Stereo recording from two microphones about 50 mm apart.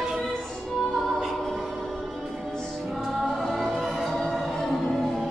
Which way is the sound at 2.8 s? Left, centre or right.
Centre.